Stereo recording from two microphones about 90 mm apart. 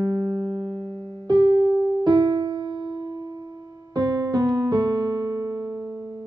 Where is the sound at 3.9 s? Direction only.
50° right (ahead or behind).